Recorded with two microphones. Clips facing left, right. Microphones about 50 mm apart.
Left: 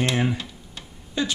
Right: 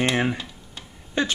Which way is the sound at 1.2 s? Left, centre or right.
Right.